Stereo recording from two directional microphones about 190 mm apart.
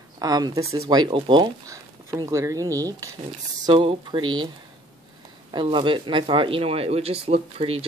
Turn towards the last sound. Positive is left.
turn(degrees=-30)  # may be behind; listen again after turning